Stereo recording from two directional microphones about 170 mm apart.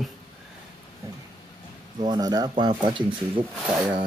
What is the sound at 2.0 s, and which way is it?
Speech, 25° right (ahead or behind).